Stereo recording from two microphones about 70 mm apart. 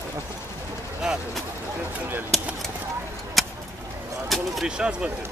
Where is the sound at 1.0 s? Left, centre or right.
Centre.